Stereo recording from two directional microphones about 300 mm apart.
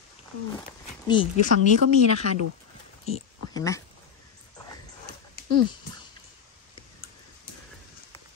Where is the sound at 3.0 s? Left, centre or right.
Centre.